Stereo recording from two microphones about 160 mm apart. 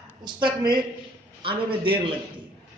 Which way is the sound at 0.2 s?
30° right (ahead or behind).